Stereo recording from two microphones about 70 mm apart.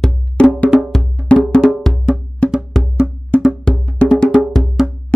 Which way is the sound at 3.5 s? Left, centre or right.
Centre.